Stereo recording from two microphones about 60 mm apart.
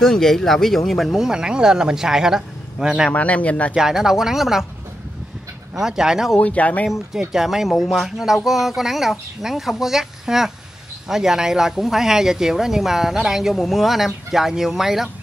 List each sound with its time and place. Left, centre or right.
0.0 s speech: centre
3.1 s speech: left
3.7 s speech: centre
5.8 s speech: centre
6.4 s speech: left
6.9 s speech: centre